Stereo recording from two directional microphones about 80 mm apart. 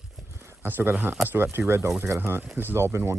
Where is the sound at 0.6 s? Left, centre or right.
Right.